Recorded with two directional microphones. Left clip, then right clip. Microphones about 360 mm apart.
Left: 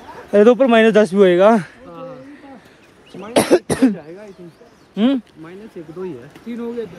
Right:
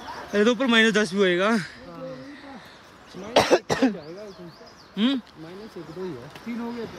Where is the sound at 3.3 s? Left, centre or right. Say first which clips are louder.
Left 4 dB; centre.